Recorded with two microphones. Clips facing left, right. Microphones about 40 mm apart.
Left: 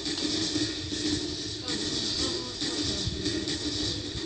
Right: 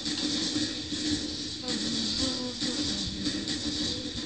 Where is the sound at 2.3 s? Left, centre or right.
Left.